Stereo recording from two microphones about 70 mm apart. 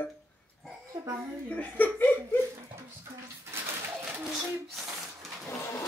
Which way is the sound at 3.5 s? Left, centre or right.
Right.